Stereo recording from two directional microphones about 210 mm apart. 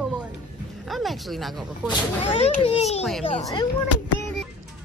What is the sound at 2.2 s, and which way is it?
A child's voice, 30° left (ahead or behind).